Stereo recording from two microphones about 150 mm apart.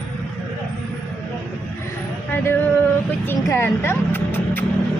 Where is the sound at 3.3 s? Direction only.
15° left (ahead or behind).